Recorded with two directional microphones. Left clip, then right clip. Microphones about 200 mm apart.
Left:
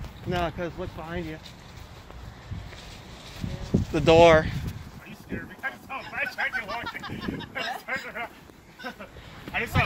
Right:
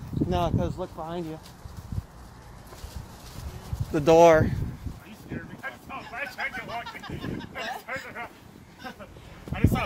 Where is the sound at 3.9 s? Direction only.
15° right (ahead or behind).